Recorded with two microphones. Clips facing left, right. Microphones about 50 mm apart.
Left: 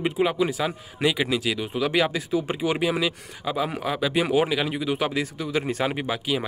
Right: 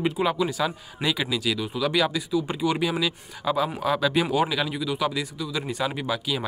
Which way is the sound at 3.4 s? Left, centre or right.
Centre.